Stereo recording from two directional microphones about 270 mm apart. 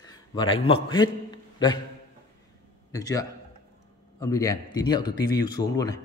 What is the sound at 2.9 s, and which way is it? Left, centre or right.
A man's voice, centre.